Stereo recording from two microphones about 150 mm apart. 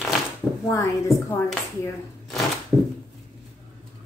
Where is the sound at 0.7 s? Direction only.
20° left (ahead or behind).